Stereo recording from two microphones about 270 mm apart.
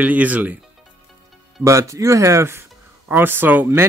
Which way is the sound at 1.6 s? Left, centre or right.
Centre.